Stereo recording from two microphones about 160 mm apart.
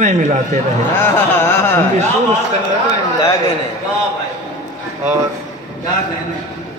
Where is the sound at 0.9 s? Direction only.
15° left (ahead or behind).